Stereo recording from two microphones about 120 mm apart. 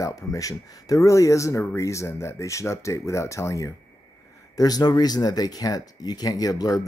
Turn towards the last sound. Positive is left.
turn(degrees=30)  # may be behind; listen again after turning